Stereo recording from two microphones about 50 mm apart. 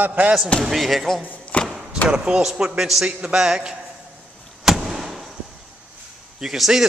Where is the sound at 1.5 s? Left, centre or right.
Left.